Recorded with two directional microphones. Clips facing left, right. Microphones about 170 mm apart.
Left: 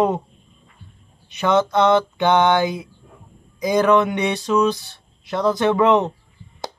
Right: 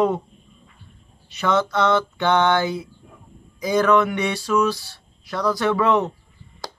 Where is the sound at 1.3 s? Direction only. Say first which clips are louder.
Left 3 dB; 15° left (ahead or behind).